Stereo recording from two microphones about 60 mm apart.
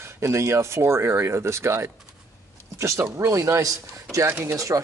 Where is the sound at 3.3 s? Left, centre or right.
Right.